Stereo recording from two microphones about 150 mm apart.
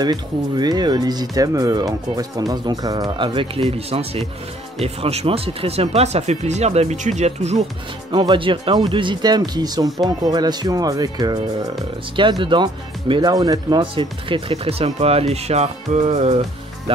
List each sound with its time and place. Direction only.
0.0 s speech: 25° right (ahead or behind); by 7.6 s 50° right (ahead or behind)
8.1 s speech: 30° right (ahead or behind)